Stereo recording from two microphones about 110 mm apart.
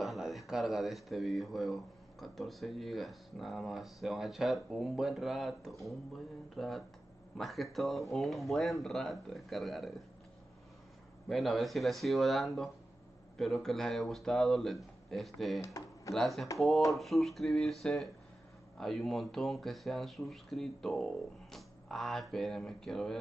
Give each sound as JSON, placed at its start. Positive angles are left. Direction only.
{"t": 0.0, "sound": "speech", "side_deg": 0}
{"t": 11.2, "sound": "speech", "side_deg": 0}
{"t": 15.6, "sound": "speech", "side_deg": 30}
{"t": 16.1, "sound": "speech", "side_deg": 0}